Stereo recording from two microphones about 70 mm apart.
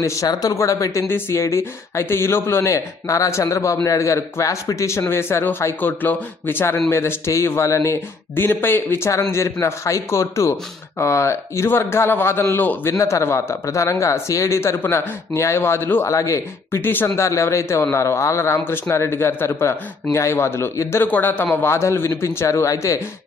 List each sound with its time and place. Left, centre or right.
0.0 s speech: left
0.3 s speech: left
1.0 s speech: left
16.1 s speech: left
16.8 s speech: left
17.2 s speech: left
21.0 s speech: left
21.5 s speech: left